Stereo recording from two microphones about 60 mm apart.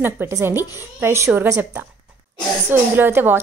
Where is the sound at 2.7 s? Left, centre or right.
Right.